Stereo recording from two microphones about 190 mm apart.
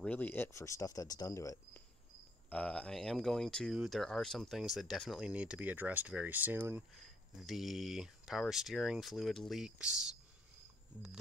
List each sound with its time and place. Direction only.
0.0 s speech: 10° left (ahead or behind)
2.5 s speech: 5° left (ahead or behind)